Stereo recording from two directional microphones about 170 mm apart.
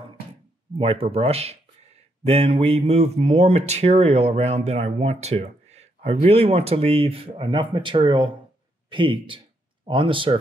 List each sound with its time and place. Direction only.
0.7 s a man's voice: 35° right (ahead or behind)